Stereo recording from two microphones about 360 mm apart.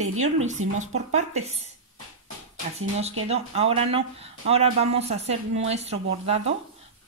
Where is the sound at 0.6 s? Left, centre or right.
Right.